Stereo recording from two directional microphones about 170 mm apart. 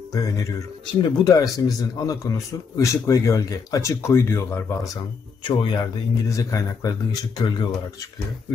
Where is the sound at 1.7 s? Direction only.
20° left (ahead or behind).